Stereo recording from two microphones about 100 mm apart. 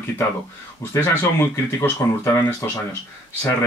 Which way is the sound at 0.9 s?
25° left (ahead or behind).